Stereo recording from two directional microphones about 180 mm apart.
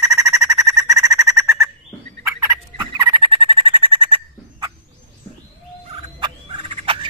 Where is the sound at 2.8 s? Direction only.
25° right (ahead or behind).